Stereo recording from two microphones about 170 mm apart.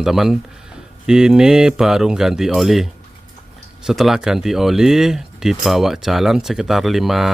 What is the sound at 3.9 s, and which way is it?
Speech, centre (ahead or behind).